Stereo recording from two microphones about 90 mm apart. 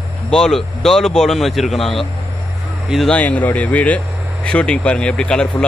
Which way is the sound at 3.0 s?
15° left (ahead or behind).